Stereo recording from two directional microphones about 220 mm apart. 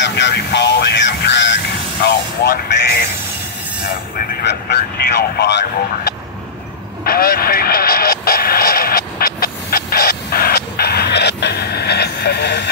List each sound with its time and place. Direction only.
0.0 s music: 50° left (ahead or behind)
4.2 s speech: 45° left (ahead or behind)
7.1 s vehicle: 45° left (ahead or behind)